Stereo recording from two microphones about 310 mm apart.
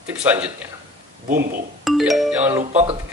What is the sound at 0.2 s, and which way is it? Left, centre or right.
Speech, centre.